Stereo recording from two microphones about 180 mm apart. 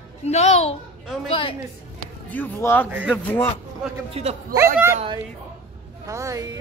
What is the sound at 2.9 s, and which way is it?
Speech, 10° right (ahead or behind).